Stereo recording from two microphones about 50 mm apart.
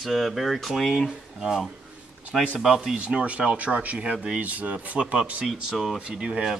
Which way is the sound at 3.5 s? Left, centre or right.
Right.